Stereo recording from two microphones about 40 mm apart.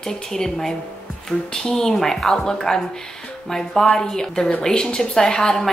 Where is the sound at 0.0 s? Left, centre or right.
Centre.